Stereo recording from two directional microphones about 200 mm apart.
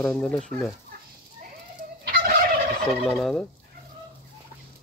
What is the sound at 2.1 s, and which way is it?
Gobble, 45° right (ahead or behind).